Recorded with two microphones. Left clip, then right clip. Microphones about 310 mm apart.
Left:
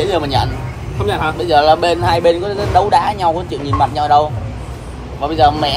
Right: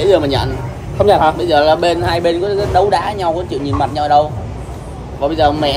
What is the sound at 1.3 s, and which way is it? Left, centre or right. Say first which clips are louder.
Speech: left 1 dB; centre.